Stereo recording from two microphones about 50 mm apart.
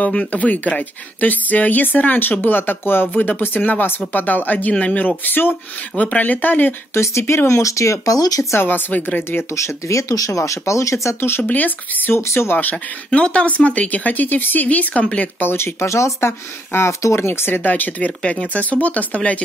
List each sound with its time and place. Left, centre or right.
0.1 s speech: left
3.1 s speech: left
6.9 s speech: left
8.6 s speech: left
9.6 s speech: left
11.1 s speech: left
11.4 s speech: left
12.2 s speech: left
12.7 s speech: left
15.5 s speech: left